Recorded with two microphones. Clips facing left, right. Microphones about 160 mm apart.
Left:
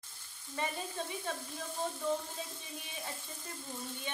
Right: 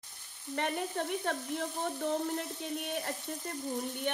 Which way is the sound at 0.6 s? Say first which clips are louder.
Right 4 dB; 65° right (ahead or behind).